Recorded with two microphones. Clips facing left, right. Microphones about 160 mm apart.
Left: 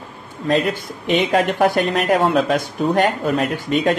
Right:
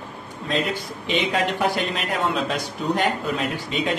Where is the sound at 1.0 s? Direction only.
50° left (ahead or behind).